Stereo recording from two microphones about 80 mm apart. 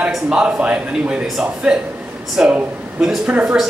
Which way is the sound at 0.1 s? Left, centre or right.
Centre.